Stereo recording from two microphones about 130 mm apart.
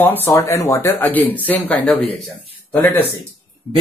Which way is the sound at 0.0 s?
15° left (ahead or behind).